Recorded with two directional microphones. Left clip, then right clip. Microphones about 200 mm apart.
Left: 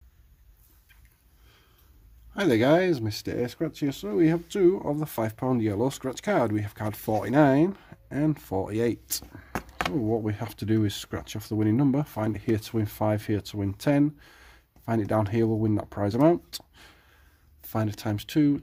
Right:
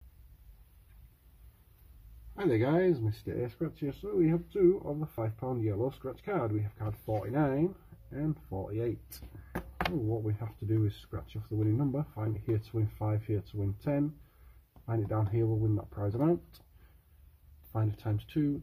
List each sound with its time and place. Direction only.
2.3 s speech: 45° left (ahead or behind)
10.2 s speech: 55° left (ahead or behind)
17.7 s speech: 45° left (ahead or behind)